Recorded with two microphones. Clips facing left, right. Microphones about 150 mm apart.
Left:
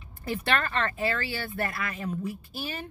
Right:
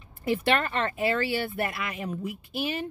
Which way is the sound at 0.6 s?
20° right (ahead or behind).